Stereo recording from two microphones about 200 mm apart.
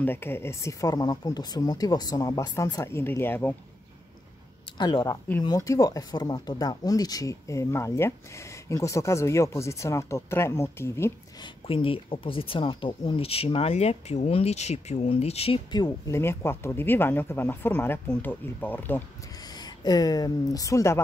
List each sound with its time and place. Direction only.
0.0 s speech: 10° left (ahead or behind)
4.7 s speech: 20° left (ahead or behind)
11.6 s speech: 25° left (ahead or behind); by 19.0 s 10° left (ahead or behind)
19.4 s speech: 20° left (ahead or behind)